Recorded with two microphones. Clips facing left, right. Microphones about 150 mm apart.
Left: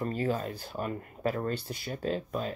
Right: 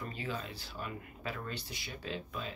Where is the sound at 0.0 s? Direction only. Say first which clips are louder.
Left 10 dB; 45° left (ahead or behind).